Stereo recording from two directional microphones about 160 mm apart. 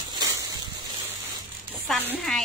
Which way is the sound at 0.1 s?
20° right (ahead or behind).